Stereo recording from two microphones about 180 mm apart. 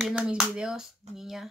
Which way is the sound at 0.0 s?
5° right (ahead or behind).